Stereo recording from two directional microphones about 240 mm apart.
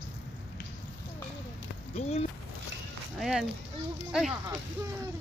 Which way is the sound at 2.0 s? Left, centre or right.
Left.